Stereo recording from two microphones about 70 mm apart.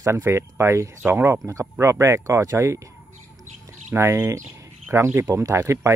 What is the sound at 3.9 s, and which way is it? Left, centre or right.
Speech, right.